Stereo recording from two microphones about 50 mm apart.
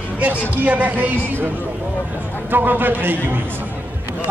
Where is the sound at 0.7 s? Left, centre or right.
Right.